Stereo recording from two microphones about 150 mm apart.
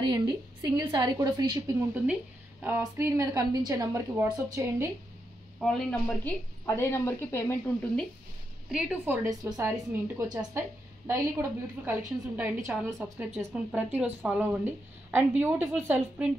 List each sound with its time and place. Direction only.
0.0 s a woman's voice: 30° right (ahead or behind)
2.6 s a woman's voice: 15° right (ahead or behind)
5.6 s speech: 5° left (ahead or behind)
6.6 s speech: 15° left (ahead or behind)
8.7 s a woman's voice: 5° right (ahead or behind)